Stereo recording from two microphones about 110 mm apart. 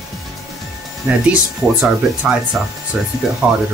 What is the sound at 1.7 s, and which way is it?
Speech, 10° right (ahead or behind).